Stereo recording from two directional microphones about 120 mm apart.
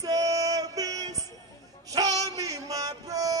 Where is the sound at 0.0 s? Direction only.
30° right (ahead or behind).